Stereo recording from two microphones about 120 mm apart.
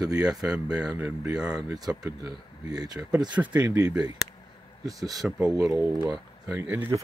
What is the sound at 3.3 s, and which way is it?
Speech, 10° right (ahead or behind).